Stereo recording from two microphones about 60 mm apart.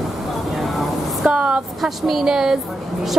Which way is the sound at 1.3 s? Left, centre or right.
Centre.